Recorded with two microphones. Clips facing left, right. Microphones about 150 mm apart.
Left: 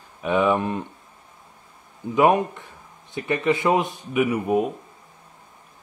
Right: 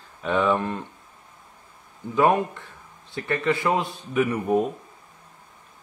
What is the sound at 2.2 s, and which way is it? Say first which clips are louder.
A man's voice: left 2 dB; 15° left (ahead or behind).